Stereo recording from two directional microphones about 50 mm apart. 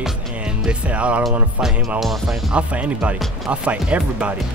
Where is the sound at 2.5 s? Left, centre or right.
Right.